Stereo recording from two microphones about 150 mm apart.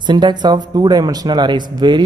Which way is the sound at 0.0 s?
30° right (ahead or behind).